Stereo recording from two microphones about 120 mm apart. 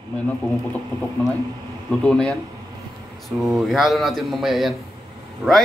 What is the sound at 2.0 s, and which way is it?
Speech, 5° left (ahead or behind).